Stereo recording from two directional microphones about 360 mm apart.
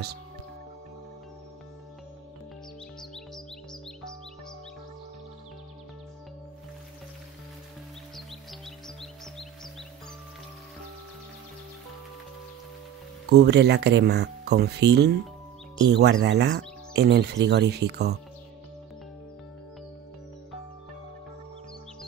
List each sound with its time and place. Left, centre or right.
3.0 s music: centre
8.5 s music: centre
13.3 s speech: right